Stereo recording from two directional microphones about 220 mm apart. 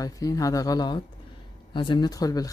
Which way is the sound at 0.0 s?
15° left (ahead or behind).